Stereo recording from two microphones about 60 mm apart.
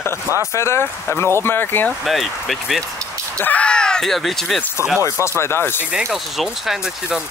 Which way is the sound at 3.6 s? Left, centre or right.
Centre.